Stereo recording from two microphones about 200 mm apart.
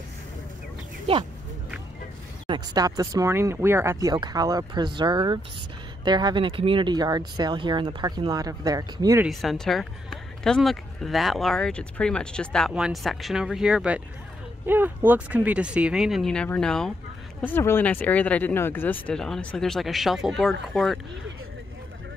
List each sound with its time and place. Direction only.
1.1 s speech: 30° right (ahead or behind)
2.4 s speech: 20° right (ahead or behind)
9.2 s speech: centre (ahead or behind)